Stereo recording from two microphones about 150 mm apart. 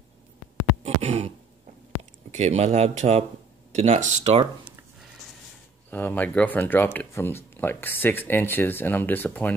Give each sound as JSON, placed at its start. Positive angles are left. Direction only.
{"t": 0.8, "sound": "a sound", "side_deg": -45}
{"t": 2.3, "sound": "speech", "side_deg": -45}
{"t": 5.9, "sound": "speech", "side_deg": 10}